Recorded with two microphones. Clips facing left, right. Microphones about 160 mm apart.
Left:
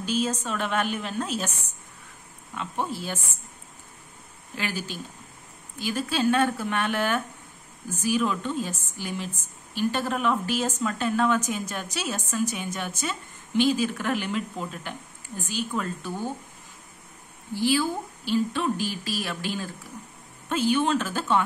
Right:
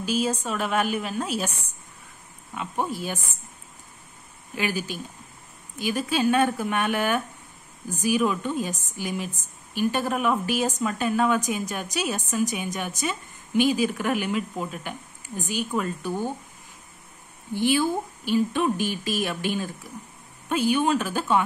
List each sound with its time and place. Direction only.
0.0 s a woman's voice: 10° right (ahead or behind)
2.5 s a woman's voice: 15° right (ahead or behind)
4.6 s a woman's voice: 15° right (ahead or behind)
17.6 s a woman's voice: 20° right (ahead or behind)